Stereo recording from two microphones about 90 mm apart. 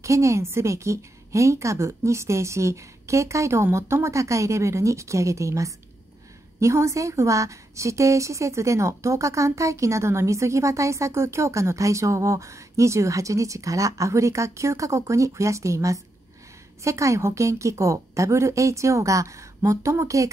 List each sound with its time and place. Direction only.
0.0 s a woman's voice: 35° right (ahead or behind)